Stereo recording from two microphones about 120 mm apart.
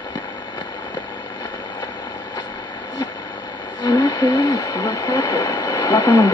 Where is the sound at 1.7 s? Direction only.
30° left (ahead or behind).